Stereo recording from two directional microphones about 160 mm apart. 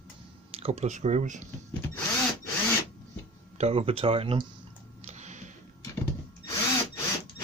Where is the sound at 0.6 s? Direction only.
40° right (ahead or behind).